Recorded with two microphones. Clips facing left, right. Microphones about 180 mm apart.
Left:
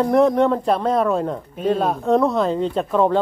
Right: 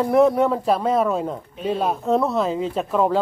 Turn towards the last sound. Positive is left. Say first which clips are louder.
# left 2 dB
turn(degrees=-5)  # may be behind; listen again after turning